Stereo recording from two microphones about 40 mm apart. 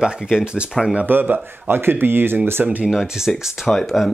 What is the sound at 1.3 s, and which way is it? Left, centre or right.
Speech, right.